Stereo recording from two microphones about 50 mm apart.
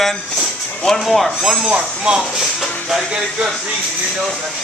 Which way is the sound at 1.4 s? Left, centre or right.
Centre.